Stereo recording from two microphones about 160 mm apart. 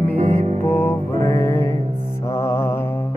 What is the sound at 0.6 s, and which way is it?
Music, 10° left (ahead or behind).